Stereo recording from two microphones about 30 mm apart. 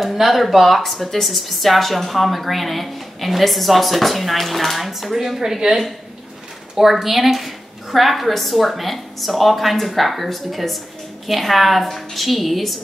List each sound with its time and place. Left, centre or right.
0.0 s a woman's voice: centre
5.4 s a woman's voice: centre
6.8 s a woman's voice: centre